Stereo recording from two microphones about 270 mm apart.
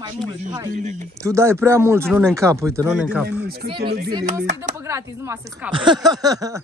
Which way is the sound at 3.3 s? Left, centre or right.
Right.